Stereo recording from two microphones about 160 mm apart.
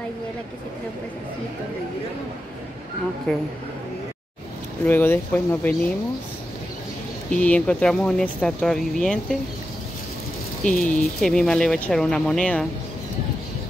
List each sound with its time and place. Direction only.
3.3 s speech: 5° left (ahead or behind)
4.8 s speech: 15° left (ahead or behind)
7.2 s speech: 5° left (ahead or behind)
10.6 s speech: 10° left (ahead or behind)